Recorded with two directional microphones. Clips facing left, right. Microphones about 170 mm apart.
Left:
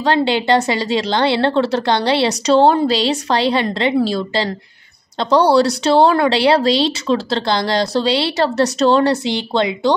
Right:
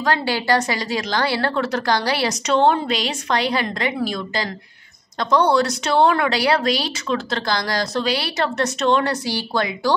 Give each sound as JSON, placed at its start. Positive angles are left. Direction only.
{"t": 0.0, "sound": "speech", "side_deg": 25}